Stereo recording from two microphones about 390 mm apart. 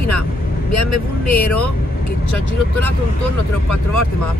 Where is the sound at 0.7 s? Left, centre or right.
Left.